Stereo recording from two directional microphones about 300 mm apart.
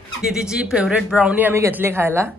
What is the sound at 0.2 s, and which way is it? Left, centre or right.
Speech, centre.